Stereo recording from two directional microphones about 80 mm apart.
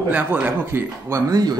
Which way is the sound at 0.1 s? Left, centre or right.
Centre.